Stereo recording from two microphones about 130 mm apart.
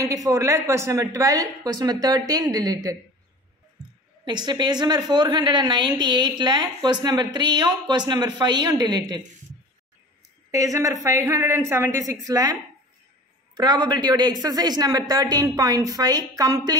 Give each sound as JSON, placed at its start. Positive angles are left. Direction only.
{"t": 0.0, "sound": "speech", "side_deg": -25}
{"t": 4.2, "sound": "a woman's voice", "side_deg": -35}
{"t": 10.5, "sound": "speech", "side_deg": -25}
{"t": 13.6, "sound": "speech", "side_deg": -35}